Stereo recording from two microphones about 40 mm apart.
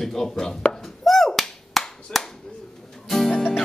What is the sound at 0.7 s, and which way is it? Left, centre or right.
Finger snapping, centre.